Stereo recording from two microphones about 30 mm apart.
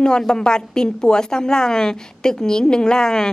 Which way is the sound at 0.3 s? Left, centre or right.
Left.